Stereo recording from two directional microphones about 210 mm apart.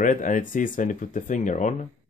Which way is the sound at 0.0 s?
40° left (ahead or behind).